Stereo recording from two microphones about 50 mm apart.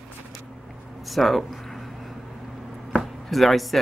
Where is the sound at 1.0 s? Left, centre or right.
Centre.